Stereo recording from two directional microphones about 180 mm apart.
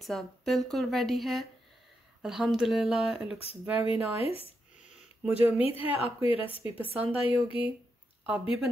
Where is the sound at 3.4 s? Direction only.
35° left (ahead or behind).